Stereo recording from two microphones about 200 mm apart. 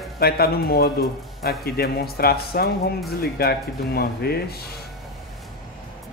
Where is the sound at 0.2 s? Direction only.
50° left (ahead or behind).